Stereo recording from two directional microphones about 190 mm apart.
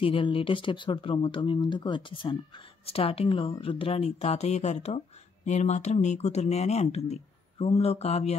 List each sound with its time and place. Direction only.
0.0 s speech: 30° left (ahead or behind)